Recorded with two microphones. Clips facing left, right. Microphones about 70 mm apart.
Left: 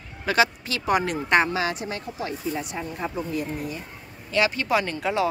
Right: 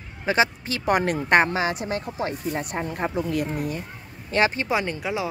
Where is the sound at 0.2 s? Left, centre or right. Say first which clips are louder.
Even; right.